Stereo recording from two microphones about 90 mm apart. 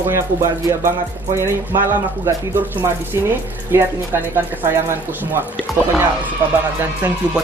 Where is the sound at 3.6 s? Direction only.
30° right (ahead or behind).